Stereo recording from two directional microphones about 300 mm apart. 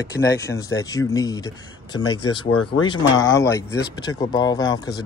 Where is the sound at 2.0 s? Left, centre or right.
Left.